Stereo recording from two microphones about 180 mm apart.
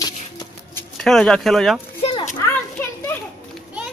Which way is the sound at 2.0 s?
30° left (ahead or behind).